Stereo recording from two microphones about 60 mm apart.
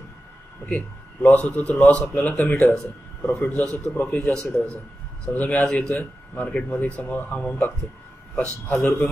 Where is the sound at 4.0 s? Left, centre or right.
Left.